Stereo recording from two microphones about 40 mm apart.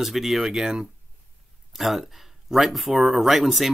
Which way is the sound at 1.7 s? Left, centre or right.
Centre.